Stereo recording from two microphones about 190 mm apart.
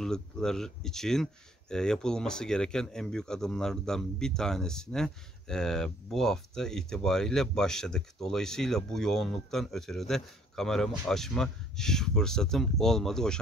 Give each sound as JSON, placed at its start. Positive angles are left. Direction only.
{"t": 0.0, "sound": "speech", "side_deg": 5}